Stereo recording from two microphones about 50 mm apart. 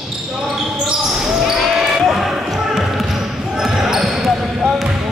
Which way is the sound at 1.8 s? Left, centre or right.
Centre.